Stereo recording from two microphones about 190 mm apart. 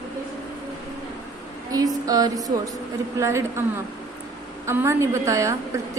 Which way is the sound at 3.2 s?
15° right (ahead or behind).